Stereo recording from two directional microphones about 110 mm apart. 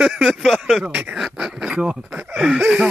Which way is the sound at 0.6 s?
5° right (ahead or behind).